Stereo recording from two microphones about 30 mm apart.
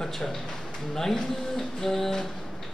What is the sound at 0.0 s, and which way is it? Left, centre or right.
A man's voice, centre.